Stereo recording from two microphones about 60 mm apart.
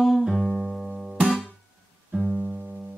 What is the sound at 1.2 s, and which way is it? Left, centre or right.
Music, centre.